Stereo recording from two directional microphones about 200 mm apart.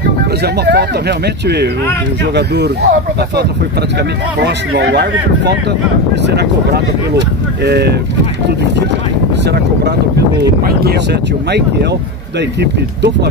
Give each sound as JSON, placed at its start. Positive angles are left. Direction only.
{"t": 0.4, "sound": "speech", "side_deg": -55}
{"t": 9.5, "sound": "speech", "side_deg": -55}
{"t": 12.4, "sound": "speech", "side_deg": -60}